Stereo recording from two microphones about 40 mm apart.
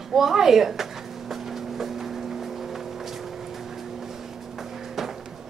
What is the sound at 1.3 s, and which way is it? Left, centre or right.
Vehicle, centre.